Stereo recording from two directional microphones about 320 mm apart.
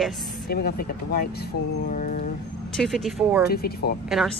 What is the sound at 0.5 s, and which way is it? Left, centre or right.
Speech, left.